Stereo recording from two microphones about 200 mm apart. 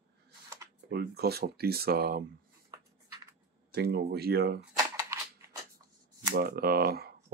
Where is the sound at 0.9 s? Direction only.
55° right (ahead or behind).